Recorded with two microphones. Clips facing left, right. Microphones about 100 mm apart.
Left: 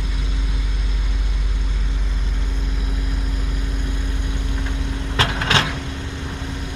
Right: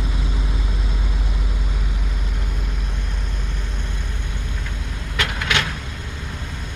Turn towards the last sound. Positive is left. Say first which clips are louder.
# left 3 dB
turn(degrees=30)  # may be behind; listen again after turning